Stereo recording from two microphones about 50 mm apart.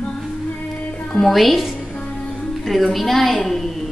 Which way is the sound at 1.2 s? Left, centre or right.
Centre.